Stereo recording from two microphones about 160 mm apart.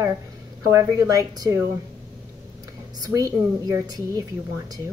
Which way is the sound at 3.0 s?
20° right (ahead or behind).